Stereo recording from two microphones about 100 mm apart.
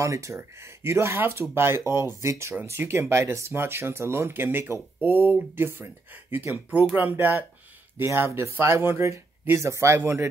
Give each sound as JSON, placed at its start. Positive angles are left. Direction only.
{"t": 0.0, "sound": "speech", "side_deg": -30}